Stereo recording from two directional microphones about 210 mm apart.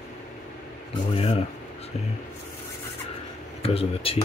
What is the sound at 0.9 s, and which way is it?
Speech, 25° left (ahead or behind).